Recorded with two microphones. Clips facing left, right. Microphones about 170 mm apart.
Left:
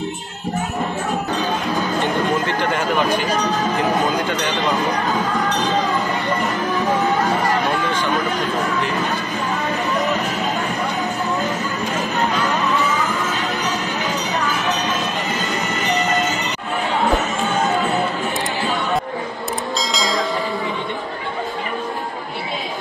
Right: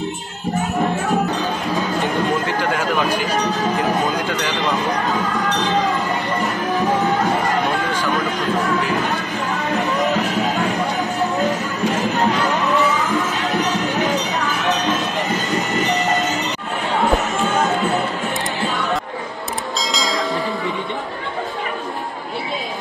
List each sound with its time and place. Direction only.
1.8 s music: centre (ahead or behind)
3.7 s speech: centre (ahead or behind)
19.8 s bell: centre (ahead or behind)